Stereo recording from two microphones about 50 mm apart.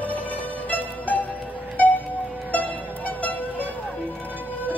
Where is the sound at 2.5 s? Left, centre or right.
Left.